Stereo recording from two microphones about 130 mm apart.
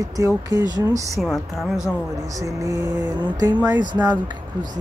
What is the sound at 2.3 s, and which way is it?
Speech, 25° right (ahead or behind).